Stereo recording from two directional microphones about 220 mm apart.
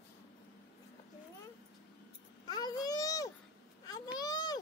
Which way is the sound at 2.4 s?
20° left (ahead or behind).